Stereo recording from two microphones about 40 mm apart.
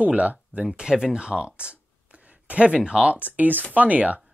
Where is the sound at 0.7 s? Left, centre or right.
Centre.